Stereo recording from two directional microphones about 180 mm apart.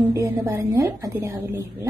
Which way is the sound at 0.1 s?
15° right (ahead or behind).